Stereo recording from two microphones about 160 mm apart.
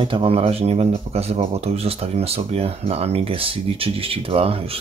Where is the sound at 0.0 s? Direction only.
35° right (ahead or behind).